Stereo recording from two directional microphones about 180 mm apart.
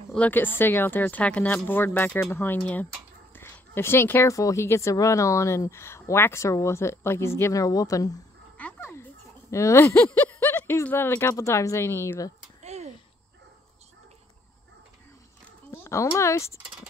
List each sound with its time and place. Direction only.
0.1 s speech: 10° left (ahead or behind)
8.5 s speech: 10° left (ahead or behind)
12.6 s a sound: 40° right (ahead or behind)
15.8 s speech: 15° left (ahead or behind)